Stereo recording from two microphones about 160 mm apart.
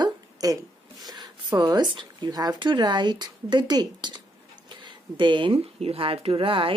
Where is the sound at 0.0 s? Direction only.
25° right (ahead or behind).